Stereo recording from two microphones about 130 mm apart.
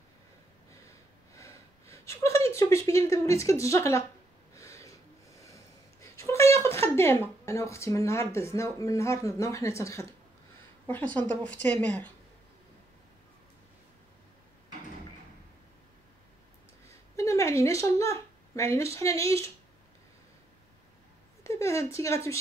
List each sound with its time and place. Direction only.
1.3 s a sound: 25° left (ahead or behind)
4.6 s snort: 25° left (ahead or behind)
5.9 s speech: 25° left (ahead or behind)
11.1 s a woman's voice: 10° left (ahead or behind)
17.2 s speech: 25° left (ahead or behind)
21.5 s speech: 20° left (ahead or behind)